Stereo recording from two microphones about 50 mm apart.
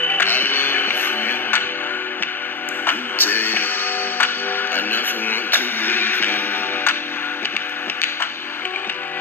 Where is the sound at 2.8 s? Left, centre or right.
Left.